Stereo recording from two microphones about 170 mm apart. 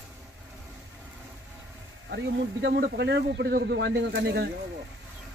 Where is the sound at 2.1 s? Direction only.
90° right.